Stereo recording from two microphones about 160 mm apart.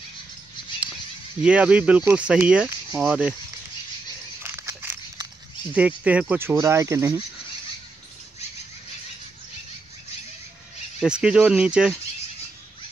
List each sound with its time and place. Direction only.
1.4 s speech: 5° right (ahead or behind)
4.4 s a sound: 15° right (ahead or behind)
5.7 s speech: 10° right (ahead or behind)
11.0 s speech: 5° right (ahead or behind)